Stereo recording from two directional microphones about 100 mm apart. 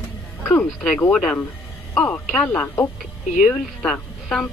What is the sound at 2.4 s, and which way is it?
Speech, 25° left (ahead or behind).